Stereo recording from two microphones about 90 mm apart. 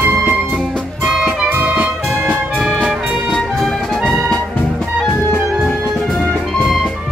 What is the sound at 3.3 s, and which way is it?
Music, 5° left (ahead or behind).